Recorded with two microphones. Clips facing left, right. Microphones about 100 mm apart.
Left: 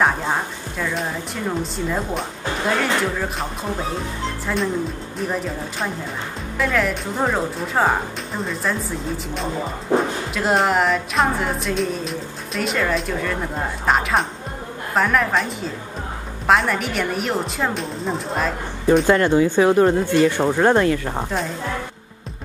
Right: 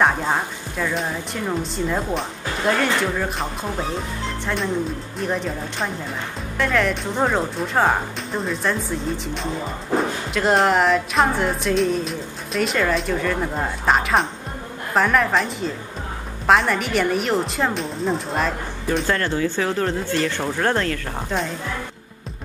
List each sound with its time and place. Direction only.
0.0 s music: centre (ahead or behind)
5.2 s music: 5° left (ahead or behind)
19.0 s speech: 15° left (ahead or behind)